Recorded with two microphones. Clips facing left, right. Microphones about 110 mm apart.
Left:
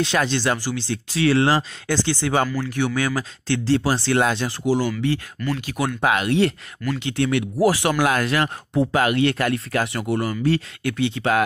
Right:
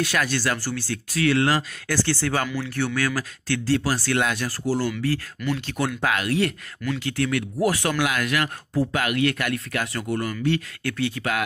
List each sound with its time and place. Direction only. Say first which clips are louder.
0.0 s speech: left 3 dB; 25° left (ahead or behind); by 5.9 s 10° left (ahead or behind)
5.9 s speech: left 5 dB; 25° left (ahead or behind)
8.0 s speech: left 4 dB; 35° left (ahead or behind)
10.8 s speech: left 3 dB; 20° left (ahead or behind)